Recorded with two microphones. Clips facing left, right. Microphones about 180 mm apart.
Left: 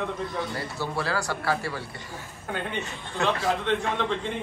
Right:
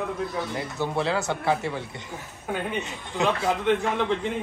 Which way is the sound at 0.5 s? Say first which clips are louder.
Right 3 dB; 20° right (ahead or behind).